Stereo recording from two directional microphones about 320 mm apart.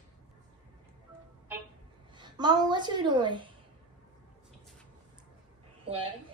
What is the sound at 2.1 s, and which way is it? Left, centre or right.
A woman's voice, centre.